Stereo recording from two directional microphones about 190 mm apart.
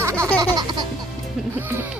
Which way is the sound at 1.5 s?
10° right (ahead or behind).